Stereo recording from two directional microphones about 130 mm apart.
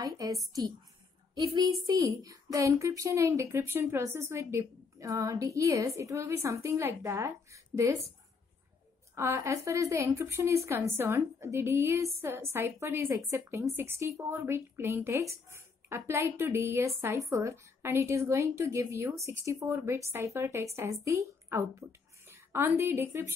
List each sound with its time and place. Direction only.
0.0 s speech: 25° right (ahead or behind)
9.1 s a woman's voice: 20° right (ahead or behind)